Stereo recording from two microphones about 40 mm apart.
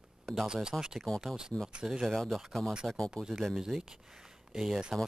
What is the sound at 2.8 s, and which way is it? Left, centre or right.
Speech, centre.